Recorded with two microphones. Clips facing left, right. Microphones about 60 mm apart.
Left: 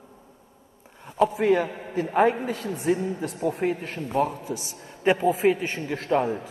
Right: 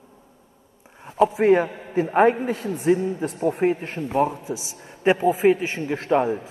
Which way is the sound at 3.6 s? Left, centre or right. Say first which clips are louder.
Right 5 dB; right.